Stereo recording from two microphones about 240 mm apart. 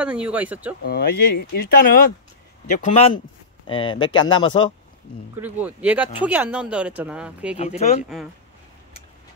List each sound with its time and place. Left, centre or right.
0.0 s speech: centre
0.8 s speech: left
2.8 s speech: left
5.4 s speech: centre